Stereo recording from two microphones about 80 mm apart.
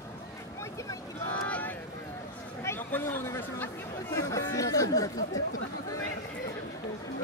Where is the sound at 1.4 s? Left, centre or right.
Centre.